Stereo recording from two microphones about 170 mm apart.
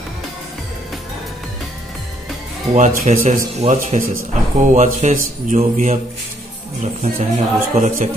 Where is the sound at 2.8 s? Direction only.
50° right (ahead or behind).